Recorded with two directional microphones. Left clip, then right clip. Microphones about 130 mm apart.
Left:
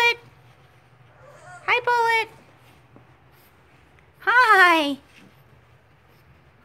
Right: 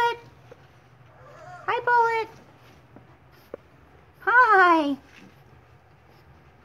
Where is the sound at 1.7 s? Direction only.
20° left (ahead or behind).